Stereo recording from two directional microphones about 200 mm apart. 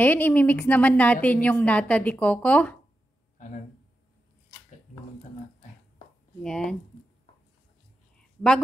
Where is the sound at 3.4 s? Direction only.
40° left (ahead or behind).